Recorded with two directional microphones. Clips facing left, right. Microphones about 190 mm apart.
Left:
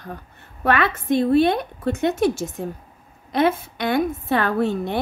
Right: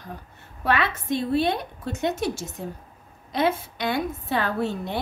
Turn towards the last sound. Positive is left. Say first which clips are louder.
# left 5 dB
turn(degrees=55)  # may be behind; listen again after turning